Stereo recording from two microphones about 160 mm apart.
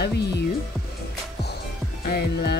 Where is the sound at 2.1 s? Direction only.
80° left.